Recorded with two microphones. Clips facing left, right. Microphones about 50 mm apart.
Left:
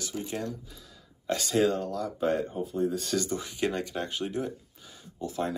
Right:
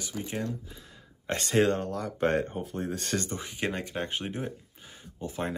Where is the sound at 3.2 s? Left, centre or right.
Right.